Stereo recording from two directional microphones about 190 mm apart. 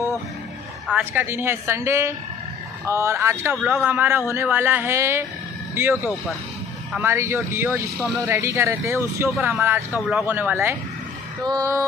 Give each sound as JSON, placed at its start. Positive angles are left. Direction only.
{"t": 0.9, "sound": "speech", "side_deg": -10}